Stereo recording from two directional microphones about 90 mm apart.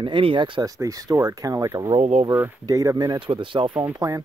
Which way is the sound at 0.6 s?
40° right (ahead or behind).